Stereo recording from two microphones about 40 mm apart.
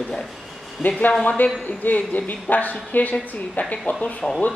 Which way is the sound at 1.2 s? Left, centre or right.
Left.